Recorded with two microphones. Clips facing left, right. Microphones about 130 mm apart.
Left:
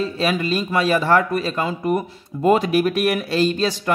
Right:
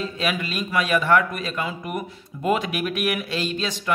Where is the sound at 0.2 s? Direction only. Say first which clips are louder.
Left 5 dB; 35° left (ahead or behind).